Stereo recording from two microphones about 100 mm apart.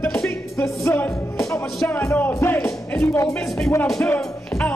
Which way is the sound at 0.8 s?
25° left (ahead or behind).